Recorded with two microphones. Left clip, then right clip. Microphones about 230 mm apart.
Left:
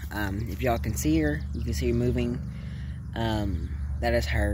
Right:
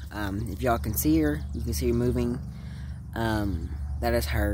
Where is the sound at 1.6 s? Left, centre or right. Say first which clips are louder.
Right 1 dB; right.